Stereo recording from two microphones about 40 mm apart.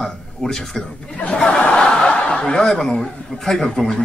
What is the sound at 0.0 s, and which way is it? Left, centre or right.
Speech, centre.